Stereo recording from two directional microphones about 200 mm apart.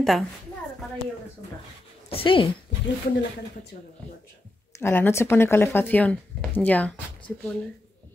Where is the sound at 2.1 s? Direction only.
25° left (ahead or behind).